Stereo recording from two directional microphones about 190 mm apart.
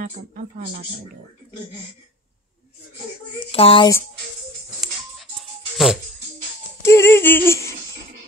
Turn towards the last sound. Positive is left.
turn(degrees=10)  # may be behind; listen again after turning